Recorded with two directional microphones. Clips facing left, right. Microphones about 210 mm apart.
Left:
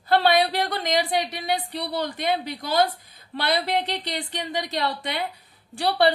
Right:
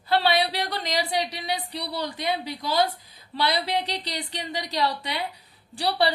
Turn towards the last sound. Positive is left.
turn(degrees=50)  # may be behind; listen again after turning